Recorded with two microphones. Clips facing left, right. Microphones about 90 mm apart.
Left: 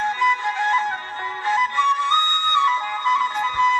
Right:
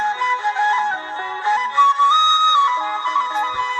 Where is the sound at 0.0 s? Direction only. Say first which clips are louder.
Right 1 dB; 25° right (ahead or behind).